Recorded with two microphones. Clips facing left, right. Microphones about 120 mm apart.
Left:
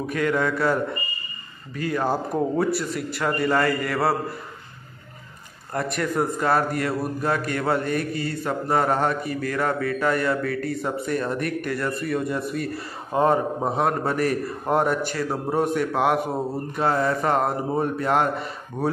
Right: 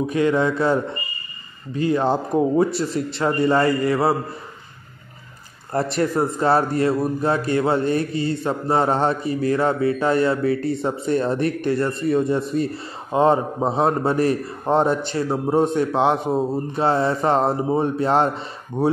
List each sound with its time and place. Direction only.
0.0 s a man's voice: 20° right (ahead or behind)
5.7 s a man's voice: 30° right (ahead or behind)